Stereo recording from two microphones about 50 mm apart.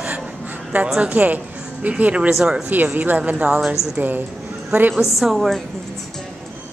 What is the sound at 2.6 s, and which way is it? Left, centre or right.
A woman's voice, right.